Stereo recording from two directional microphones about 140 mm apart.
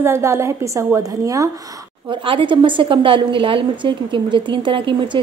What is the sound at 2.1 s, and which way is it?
A woman's voice, 35° right (ahead or behind).